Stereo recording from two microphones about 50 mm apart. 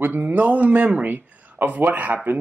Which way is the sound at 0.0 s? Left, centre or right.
Right.